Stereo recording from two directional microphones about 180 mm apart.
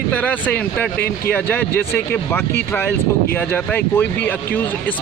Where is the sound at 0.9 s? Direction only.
60° left (ahead or behind).